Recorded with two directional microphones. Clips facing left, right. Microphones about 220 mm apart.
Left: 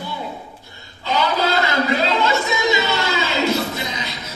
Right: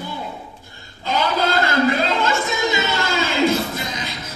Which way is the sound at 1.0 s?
50° right (ahead or behind).